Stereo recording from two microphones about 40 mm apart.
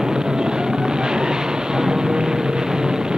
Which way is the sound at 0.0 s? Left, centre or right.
Centre.